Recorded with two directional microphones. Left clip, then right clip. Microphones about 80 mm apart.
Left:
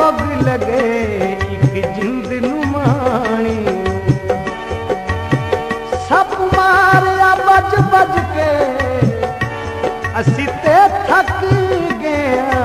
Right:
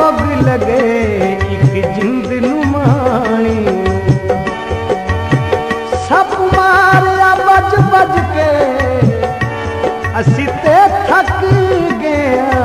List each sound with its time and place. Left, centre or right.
0.0 s music: right
6.0 s music: right
10.2 s music: right